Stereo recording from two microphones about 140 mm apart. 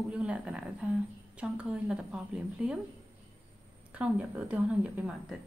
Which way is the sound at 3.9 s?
10° right (ahead or behind).